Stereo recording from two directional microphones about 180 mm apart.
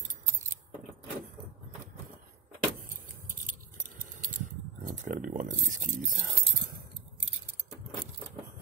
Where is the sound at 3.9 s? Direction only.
45° right (ahead or behind).